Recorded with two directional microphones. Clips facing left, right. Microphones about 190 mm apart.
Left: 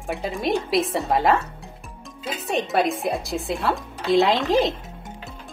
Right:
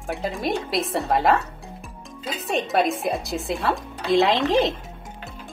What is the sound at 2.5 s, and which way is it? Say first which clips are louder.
Speech: even; centre (ahead or behind).